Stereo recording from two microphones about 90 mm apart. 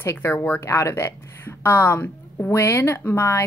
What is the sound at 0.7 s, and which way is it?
A woman's voice, 35° left (ahead or behind).